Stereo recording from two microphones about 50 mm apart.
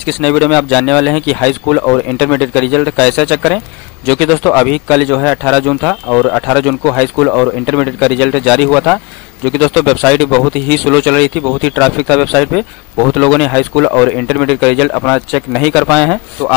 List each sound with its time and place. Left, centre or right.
0.0 s a man's voice: centre
14.0 s a man's voice: left